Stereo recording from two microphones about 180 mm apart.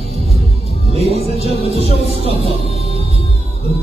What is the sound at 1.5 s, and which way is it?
Music, 35° right (ahead or behind).